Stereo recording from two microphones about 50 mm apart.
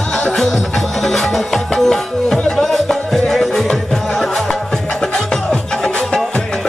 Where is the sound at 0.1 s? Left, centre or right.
Centre.